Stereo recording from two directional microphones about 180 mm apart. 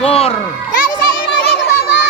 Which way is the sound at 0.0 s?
35° left (ahead or behind).